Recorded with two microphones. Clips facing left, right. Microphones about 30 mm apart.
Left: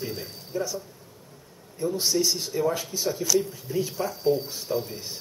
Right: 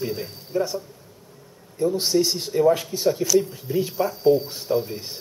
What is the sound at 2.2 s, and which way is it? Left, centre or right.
Speech, right.